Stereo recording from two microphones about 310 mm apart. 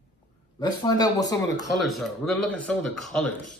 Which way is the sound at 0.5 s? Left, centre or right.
Centre.